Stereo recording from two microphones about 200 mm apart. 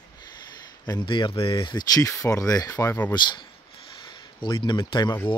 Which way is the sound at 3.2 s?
20° left (ahead or behind).